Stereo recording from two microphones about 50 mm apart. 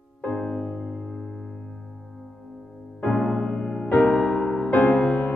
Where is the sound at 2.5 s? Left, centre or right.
Left.